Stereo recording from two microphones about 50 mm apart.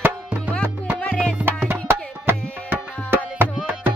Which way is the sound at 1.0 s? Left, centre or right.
Centre.